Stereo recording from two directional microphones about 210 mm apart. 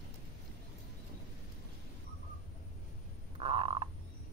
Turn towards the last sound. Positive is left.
turn(degrees=-25)  # may be behind; listen again after turning